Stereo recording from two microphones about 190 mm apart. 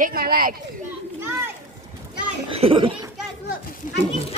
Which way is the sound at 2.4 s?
30° right (ahead or behind).